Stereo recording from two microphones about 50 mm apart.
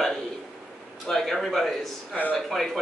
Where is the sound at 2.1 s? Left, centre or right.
Left.